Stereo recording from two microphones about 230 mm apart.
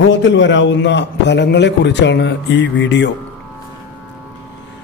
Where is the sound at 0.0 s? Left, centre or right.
Left.